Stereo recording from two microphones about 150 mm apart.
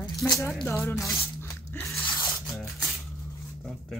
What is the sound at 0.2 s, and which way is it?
Speech, 20° left (ahead or behind).